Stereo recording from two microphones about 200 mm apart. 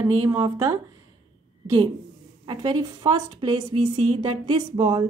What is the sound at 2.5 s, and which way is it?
Speech, 20° right (ahead or behind).